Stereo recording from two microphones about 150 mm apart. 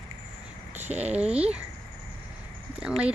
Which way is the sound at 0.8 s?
10° right (ahead or behind).